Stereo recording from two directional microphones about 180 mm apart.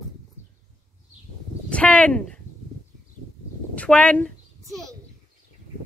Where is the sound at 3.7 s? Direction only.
5° left (ahead or behind).